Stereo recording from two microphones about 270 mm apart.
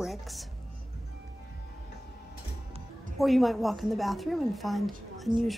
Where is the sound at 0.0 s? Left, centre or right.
Centre.